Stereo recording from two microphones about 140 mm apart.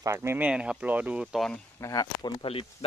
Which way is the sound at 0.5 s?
5° right (ahead or behind).